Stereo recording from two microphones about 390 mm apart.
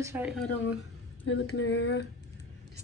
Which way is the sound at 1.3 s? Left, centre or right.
Left.